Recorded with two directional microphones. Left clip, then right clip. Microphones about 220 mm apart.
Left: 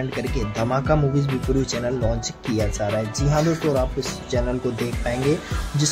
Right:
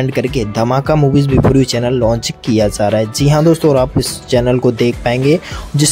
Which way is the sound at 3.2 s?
35° right (ahead or behind).